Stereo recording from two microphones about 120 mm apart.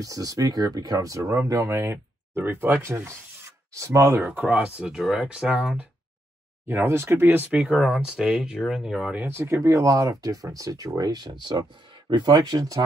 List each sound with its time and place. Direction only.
0.0 s speech: 30° right (ahead or behind); by 5.9 s 10° right (ahead or behind)
6.7 s speech: 20° right (ahead or behind)
7.6 s speech: 5° right (ahead or behind)
9.2 s speech: 20° right (ahead or behind)